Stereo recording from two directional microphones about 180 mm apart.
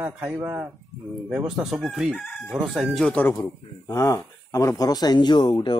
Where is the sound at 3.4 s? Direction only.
20° left (ahead or behind).